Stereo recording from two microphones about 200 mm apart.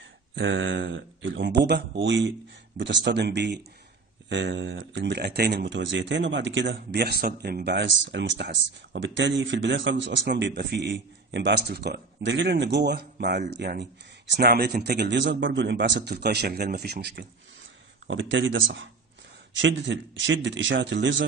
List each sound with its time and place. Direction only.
0.4 s speech: 70° right (ahead or behind)
18.0 s speech: 70° right (ahead or behind)